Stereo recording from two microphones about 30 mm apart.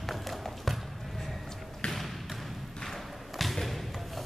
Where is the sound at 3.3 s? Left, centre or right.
Centre.